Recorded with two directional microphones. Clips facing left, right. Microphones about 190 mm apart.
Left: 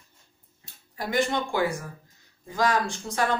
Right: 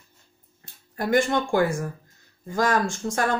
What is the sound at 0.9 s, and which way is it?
A woman's voice, 50° right (ahead or behind).